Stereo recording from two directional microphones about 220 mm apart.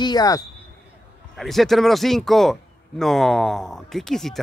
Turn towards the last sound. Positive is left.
turn(degrees=0)  # may be behind; listen again after turning